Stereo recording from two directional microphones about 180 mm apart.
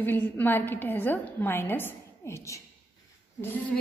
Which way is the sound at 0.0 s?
10° left (ahead or behind).